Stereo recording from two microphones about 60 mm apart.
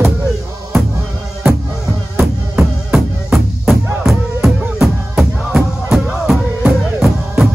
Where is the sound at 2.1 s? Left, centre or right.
Right.